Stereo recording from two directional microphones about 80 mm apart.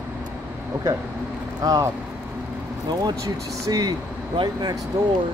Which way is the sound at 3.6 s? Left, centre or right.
Right.